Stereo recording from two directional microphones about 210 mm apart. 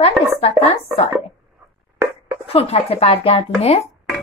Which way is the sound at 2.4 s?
30° left (ahead or behind).